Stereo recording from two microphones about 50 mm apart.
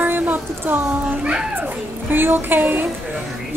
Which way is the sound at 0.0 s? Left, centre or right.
Right.